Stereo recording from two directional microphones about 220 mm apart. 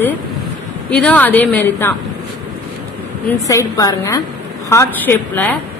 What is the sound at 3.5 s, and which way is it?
A woman's voice, 15° left (ahead or behind).